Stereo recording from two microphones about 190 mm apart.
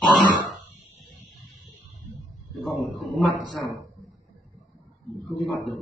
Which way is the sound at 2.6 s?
Centre (ahead or behind).